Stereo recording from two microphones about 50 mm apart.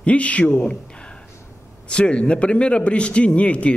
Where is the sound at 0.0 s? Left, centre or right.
Left.